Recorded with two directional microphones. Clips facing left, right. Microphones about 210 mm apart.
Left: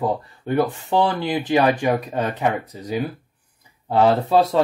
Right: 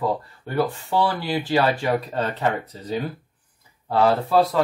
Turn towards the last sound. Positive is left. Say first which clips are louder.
# left 2 dB
turn(degrees=25)  # may be behind; listen again after turning